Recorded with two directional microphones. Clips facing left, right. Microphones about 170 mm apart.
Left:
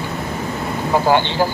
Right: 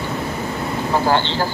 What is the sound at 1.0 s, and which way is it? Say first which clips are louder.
Speech: left 4 dB; 15° left (ahead or behind).